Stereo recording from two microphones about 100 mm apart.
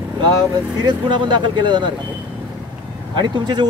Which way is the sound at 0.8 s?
50° right (ahead or behind).